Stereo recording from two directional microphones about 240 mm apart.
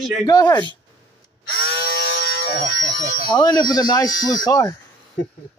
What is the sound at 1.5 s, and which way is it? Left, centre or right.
Electric shaver, left.